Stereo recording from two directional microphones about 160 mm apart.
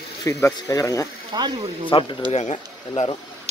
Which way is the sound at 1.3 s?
25° right (ahead or behind).